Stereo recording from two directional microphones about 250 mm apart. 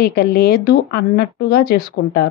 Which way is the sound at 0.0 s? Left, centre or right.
Left.